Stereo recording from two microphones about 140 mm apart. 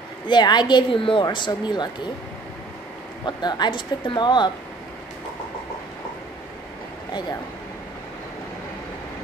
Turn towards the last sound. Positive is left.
turn(degrees=30)  # may be behind; listen again after turning